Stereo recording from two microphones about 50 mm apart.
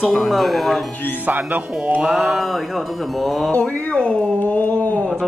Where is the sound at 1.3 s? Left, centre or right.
Right.